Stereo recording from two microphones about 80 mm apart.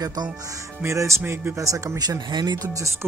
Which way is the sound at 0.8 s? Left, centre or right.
Right.